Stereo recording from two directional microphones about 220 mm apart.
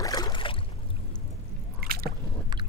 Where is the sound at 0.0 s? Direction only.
20° left (ahead or behind).